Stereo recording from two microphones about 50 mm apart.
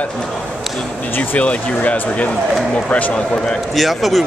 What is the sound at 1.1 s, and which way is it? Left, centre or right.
Speech, left.